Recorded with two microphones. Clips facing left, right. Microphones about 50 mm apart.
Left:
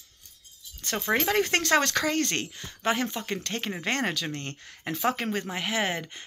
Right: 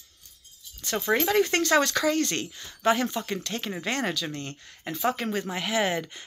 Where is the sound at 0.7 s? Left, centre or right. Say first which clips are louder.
Right 1 dB; left.